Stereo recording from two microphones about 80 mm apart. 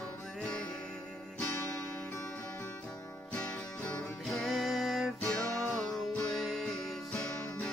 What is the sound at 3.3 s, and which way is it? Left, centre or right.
Music, centre.